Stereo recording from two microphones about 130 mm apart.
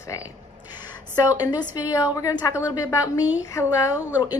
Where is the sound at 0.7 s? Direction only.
35° left (ahead or behind).